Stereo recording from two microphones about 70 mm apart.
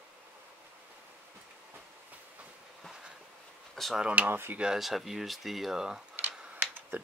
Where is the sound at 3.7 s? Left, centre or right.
Centre.